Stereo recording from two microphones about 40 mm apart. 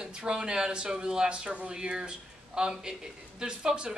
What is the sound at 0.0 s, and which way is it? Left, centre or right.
Speech, right.